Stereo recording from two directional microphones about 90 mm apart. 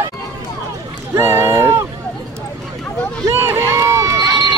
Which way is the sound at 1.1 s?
30° right (ahead or behind).